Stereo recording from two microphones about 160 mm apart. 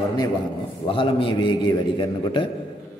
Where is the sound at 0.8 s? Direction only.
30° left (ahead or behind).